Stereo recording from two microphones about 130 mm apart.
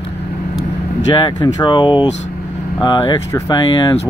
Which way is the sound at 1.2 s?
35° left (ahead or behind).